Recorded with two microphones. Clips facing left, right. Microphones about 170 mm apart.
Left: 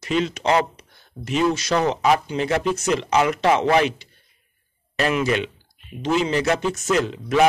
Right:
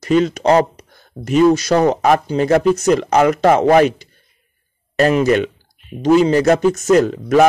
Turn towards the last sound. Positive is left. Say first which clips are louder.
# right 6 dB
turn(degrees=-45)  # may be behind; listen again after turning